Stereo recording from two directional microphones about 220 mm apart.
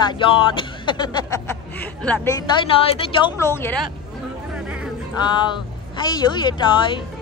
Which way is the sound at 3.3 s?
10° left (ahead or behind).